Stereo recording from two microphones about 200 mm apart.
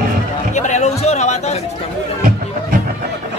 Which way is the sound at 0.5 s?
35° left (ahead or behind).